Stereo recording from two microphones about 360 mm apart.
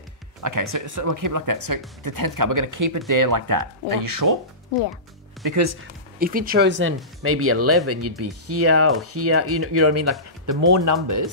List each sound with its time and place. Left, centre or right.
0.4 s speech: right
5.4 s speech: right
6.1 s speech: right
10.4 s speech: right